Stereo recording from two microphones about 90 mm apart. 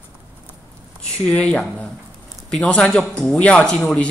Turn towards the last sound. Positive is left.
turn(degrees=10)  # may be behind; listen again after turning